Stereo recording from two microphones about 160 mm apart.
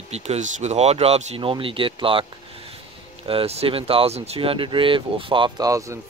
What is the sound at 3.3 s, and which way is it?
Speech, 35° right (ahead or behind).